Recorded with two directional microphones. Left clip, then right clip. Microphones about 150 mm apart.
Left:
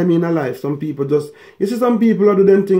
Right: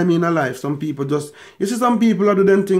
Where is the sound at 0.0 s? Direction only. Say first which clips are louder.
Left 1 dB; 10° right (ahead or behind).